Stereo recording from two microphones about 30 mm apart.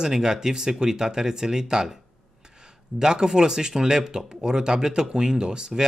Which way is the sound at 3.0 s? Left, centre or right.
Right.